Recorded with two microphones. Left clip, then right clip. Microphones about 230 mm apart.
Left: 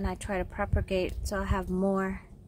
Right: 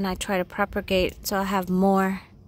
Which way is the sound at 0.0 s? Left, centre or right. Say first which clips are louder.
Right 7 dB; right.